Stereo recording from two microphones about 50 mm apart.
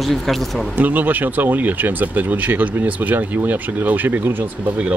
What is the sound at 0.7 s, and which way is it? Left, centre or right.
Speech, right.